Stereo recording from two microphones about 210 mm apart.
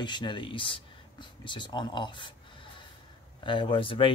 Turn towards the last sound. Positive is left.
turn(degrees=25)  # may be behind; listen again after turning